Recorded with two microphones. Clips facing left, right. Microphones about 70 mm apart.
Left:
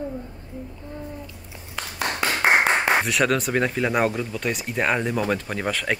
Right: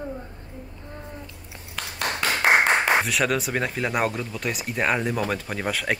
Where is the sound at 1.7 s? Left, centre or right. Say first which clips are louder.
Left 1 dB; centre.